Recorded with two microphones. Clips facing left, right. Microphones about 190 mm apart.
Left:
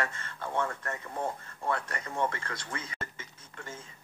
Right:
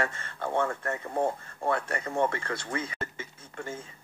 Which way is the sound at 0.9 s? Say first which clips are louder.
Right 6 dB; 50° right (ahead or behind).